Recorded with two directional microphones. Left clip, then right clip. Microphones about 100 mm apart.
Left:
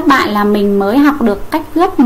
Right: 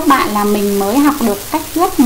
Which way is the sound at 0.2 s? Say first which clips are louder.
Left 2 dB; 10° left (ahead or behind).